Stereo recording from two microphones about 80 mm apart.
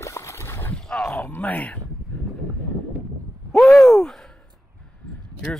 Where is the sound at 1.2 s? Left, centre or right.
Left.